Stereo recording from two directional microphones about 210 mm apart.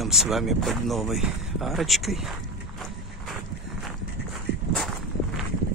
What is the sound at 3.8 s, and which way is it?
Walk, centre (ahead or behind).